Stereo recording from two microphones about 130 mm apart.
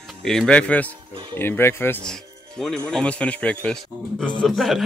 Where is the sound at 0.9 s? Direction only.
40° right (ahead or behind).